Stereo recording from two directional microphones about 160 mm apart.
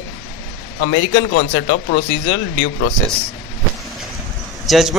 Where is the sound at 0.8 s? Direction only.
90° left.